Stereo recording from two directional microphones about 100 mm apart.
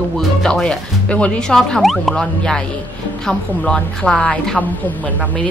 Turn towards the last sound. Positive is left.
turn(degrees=15)  # may be behind; listen again after turning